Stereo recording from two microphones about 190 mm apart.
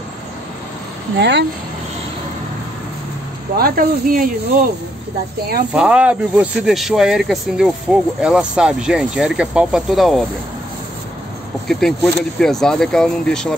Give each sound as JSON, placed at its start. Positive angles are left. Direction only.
{"t": 1.1, "sound": "speech", "side_deg": -65}
{"t": 3.5, "sound": "speech", "side_deg": -50}
{"t": 5.7, "sound": "speech", "side_deg": -5}
{"t": 11.6, "sound": "speech", "side_deg": 0}